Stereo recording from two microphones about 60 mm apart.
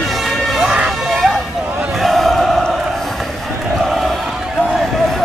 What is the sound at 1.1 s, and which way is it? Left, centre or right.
Vehicle, centre.